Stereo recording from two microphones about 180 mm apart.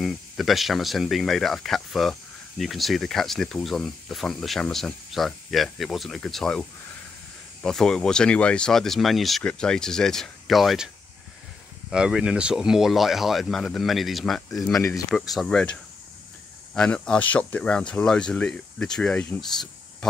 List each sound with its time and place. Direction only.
0.0 s speech: centre (ahead or behind)
7.6 s speech: 5° left (ahead or behind)
11.9 s speech: 5° right (ahead or behind)